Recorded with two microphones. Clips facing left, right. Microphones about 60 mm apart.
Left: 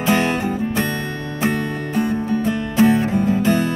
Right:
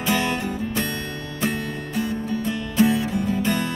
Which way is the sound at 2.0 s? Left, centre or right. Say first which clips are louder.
Left 6 dB; left.